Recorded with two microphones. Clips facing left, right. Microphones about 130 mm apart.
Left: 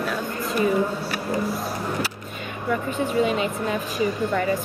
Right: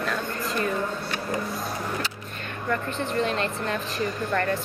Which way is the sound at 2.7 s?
5° left (ahead or behind).